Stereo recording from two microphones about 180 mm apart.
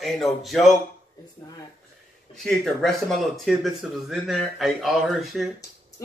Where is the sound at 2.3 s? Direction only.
Centre (ahead or behind).